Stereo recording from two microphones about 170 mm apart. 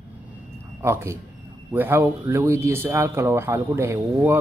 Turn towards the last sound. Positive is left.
turn(degrees=-15)  # may be behind; listen again after turning